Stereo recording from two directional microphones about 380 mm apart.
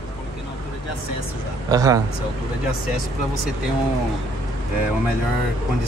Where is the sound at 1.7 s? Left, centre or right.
Centre.